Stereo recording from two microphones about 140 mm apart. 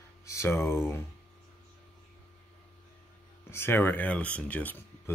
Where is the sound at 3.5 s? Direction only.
15° left (ahead or behind).